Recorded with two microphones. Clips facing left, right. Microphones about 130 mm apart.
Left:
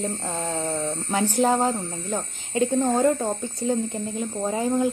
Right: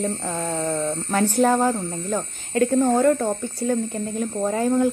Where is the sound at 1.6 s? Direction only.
65° right (ahead or behind).